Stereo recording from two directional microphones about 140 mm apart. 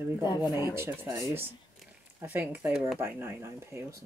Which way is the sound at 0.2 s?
30° left (ahead or behind).